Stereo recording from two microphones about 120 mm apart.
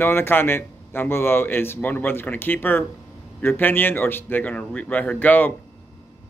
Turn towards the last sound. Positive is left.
turn(degrees=15)  # may be behind; listen again after turning